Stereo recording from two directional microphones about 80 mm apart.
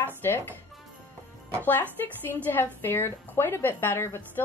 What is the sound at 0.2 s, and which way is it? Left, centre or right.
Speech, left.